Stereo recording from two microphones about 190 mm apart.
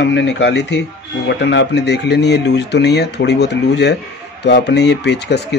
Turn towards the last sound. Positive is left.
turn(degrees=60)  # may be behind; listen again after turning